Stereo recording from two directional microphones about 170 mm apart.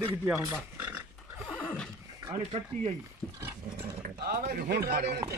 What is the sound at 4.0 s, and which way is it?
Speech, 70° right (ahead or behind).